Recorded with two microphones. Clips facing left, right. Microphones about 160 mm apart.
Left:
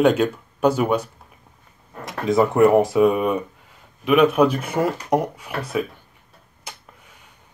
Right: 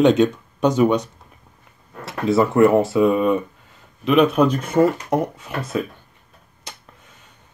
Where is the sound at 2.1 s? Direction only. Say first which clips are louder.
Right 1 dB; 20° left (ahead or behind).